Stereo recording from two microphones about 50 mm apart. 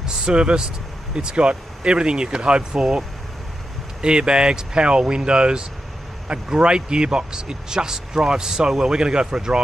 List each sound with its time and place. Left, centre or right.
0.0 s speech: centre
4.0 s speech: centre